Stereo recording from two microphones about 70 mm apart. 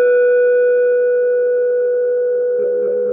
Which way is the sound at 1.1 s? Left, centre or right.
Centre.